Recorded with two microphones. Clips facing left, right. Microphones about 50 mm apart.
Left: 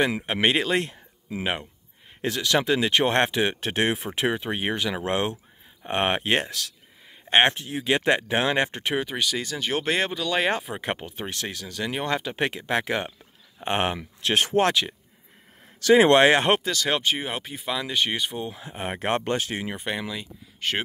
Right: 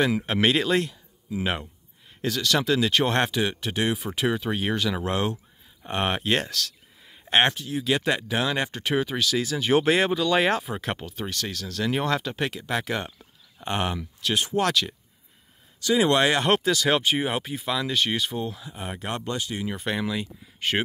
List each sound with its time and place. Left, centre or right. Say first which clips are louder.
0.0 s speech: even; centre
2.4 s speech: left 1 dB; centre
3.4 s speech: left 2 dB; left; by 7.5 s centre
7.5 s speech: left 1 dB; left
8.8 s speech: right 1 dB; centre
11.6 s speech: right 4 dB; centre
12.5 s speech: left 2 dB; left
14.3 s speech: left 3 dB; left
14.7 s speech: left 1 dB; centre
15.8 s speech: left 5 dB; left
16.3 s speech: left 3 dB; left
16.6 s speech: right 2 dB; centre
18.6 s speech: left 4 dB; left
19.7 s speech: right 2 dB; centre